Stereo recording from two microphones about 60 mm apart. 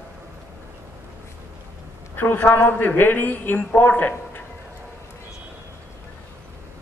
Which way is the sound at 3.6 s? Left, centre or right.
Centre.